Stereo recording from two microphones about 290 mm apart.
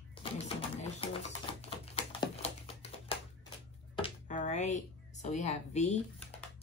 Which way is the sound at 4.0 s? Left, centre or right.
Left.